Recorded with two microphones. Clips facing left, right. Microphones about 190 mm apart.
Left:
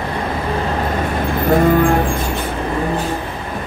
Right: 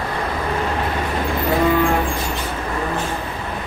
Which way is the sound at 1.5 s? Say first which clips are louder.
Left 5 dB; 50° left (ahead or behind).